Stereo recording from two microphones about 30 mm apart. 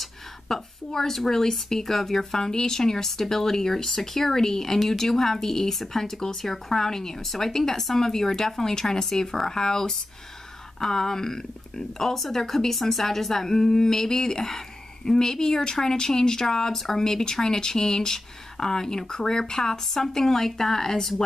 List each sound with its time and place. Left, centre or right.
0.0 s speech: centre
19.9 s speech: centre